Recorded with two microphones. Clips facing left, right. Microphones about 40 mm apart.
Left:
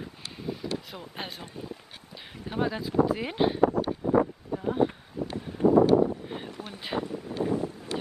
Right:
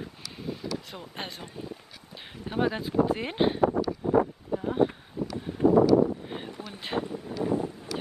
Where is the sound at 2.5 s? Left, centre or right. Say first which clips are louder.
Right 2 dB; centre.